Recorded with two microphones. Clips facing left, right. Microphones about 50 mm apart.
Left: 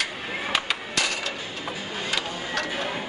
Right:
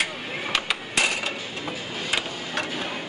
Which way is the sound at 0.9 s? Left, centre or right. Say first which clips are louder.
Right 4 dB; right.